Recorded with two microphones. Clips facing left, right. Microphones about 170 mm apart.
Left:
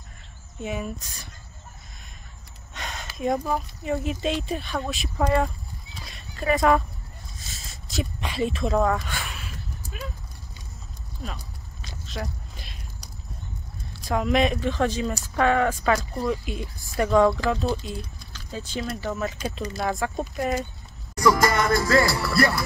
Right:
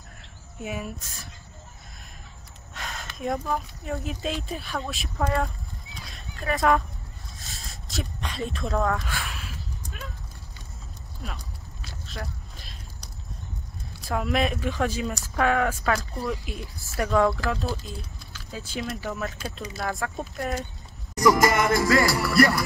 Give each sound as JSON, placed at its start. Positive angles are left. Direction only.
{"t": 0.6, "sound": "speech", "side_deg": 0}
{"t": 2.7, "sound": "speech", "side_deg": 0}
{"t": 5.9, "sound": "dog", "side_deg": 0}
{"t": 7.3, "sound": "a sound", "side_deg": 0}
{"t": 12.2, "sound": "a sound", "side_deg": 0}
{"t": 14.0, "sound": "speech", "side_deg": -5}
{"t": 21.1, "sound": "music", "side_deg": -20}